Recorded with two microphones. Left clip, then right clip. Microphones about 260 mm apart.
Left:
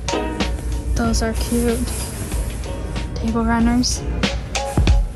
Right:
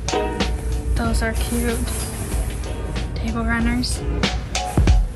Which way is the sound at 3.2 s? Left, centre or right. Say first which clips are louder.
Left 4 dB; centre.